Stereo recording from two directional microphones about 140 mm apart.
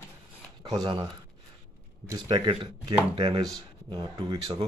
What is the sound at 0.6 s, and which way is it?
Speech, 30° right (ahead or behind).